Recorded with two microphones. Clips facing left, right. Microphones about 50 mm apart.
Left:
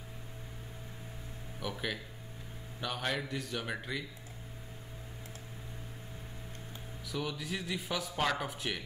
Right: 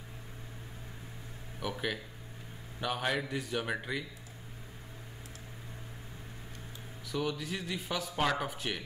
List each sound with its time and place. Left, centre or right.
1.6 s speech: centre
7.1 s speech: centre